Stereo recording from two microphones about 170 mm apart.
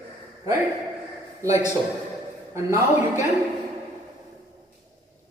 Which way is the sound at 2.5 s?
15° right (ahead or behind).